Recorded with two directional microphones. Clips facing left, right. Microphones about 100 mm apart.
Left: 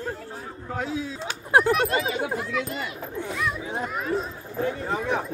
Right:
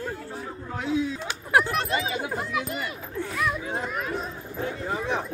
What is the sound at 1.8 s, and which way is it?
Speech, 50° left (ahead or behind).